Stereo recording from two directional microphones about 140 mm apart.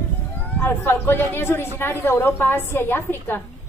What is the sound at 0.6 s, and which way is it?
A woman's voice, 15° left (ahead or behind).